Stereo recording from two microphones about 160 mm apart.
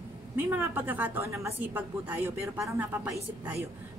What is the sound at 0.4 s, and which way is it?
A woman's voice, 15° right (ahead or behind).